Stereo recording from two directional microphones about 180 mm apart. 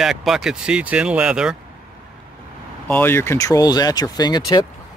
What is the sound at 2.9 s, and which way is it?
Speech, 10° left (ahead or behind).